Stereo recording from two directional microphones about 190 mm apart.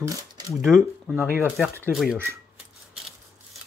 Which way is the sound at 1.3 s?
10° right (ahead or behind).